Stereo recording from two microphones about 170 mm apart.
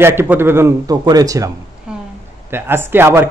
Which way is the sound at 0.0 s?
15° right (ahead or behind).